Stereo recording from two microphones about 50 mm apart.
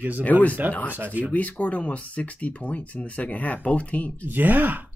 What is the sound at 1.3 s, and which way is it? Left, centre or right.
Speech, left.